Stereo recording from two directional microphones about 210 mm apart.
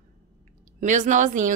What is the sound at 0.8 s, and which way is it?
Speech, 35° right (ahead or behind).